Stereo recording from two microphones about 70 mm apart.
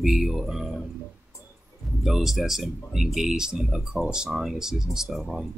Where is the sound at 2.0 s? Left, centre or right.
Centre.